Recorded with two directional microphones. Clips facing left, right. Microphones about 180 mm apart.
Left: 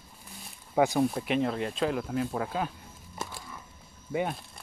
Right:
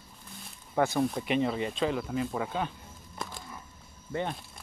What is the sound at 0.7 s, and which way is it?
Speech, 10° left (ahead or behind).